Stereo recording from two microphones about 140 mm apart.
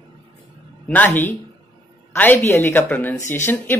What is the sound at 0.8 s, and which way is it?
Speech, 10° left (ahead or behind).